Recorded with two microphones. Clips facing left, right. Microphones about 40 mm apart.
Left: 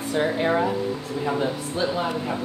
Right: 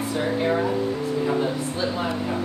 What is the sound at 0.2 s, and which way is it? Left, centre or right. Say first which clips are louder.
Speech: left 2 dB; centre.